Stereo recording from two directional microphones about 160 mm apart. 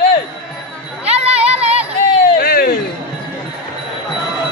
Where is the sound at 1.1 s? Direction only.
40° right (ahead or behind).